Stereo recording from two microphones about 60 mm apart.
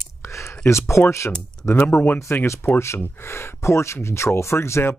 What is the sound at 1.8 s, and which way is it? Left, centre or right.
Speech, left.